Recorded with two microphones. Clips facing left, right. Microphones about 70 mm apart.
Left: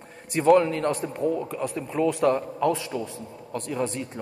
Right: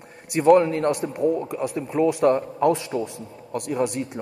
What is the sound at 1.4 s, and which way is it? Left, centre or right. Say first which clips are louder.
Speech: right 3 dB; centre.